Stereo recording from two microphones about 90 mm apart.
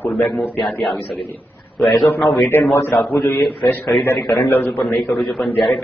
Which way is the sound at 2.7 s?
30° left (ahead or behind).